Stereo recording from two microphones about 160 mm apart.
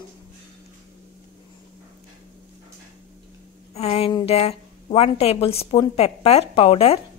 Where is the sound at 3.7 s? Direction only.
40° left (ahead or behind).